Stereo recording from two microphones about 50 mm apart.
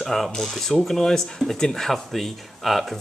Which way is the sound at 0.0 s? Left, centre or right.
Centre.